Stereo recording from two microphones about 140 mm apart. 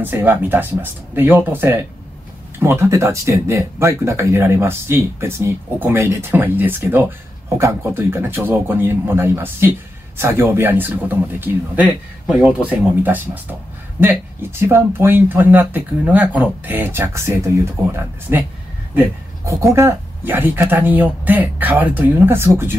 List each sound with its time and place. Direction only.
0.0 s speech: 15° right (ahead or behind)